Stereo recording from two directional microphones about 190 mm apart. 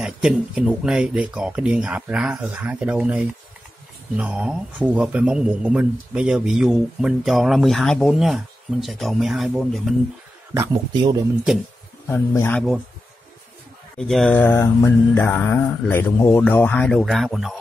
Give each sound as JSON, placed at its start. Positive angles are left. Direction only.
{"t": 0.0, "sound": "a man's voice", "side_deg": -5}
{"t": 10.5, "sound": "speech", "side_deg": -20}
{"t": 12.1, "sound": "mantra", "side_deg": 10}
{"t": 13.9, "sound": "mantra", "side_deg": 0}